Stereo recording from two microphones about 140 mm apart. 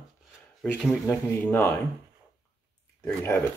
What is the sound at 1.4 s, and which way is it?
Speech, 15° left (ahead or behind).